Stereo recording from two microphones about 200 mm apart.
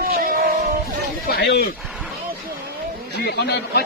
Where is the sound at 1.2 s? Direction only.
55° left (ahead or behind).